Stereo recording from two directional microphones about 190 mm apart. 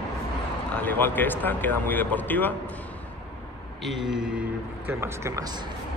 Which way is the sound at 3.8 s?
Centre (ahead or behind).